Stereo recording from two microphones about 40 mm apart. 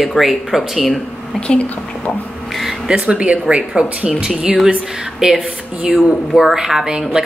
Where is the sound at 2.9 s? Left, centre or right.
Right.